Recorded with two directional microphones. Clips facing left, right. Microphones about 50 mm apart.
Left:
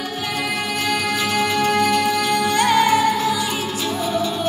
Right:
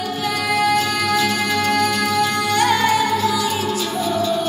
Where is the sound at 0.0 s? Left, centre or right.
Left.